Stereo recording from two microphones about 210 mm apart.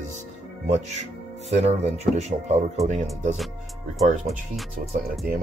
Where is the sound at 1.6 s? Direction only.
30° right (ahead or behind).